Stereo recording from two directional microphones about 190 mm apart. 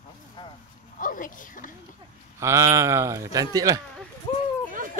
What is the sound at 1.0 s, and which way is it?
Speech, 45° left (ahead or behind).